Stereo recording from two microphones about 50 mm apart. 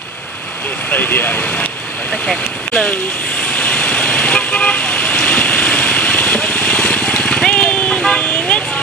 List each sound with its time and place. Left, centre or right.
0.8 s speech: left
2.9 s vehicle: left; by 8.2 s centre